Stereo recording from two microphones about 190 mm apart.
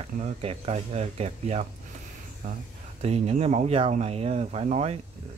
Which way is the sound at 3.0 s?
35° right (ahead or behind).